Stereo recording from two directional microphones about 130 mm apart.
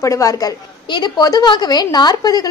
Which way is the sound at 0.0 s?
25° left (ahead or behind).